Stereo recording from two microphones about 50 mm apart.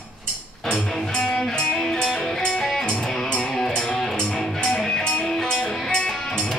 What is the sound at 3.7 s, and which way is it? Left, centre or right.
Music, centre.